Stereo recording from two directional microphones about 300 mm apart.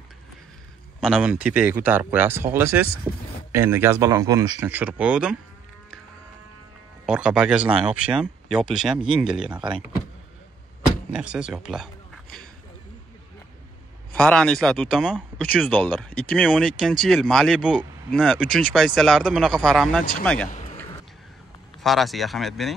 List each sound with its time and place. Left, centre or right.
1.0 s speech: centre
7.1 s speech: centre
11.1 s speech: centre
14.1 s speech: centre
20.4 s a sound: left
21.8 s speech: centre